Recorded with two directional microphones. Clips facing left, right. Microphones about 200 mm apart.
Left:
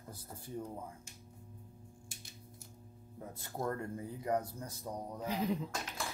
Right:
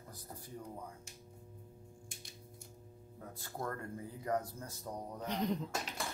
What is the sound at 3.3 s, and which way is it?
Speech, 20° left (ahead or behind).